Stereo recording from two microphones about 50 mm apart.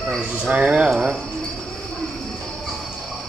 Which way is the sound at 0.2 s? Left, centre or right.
Right.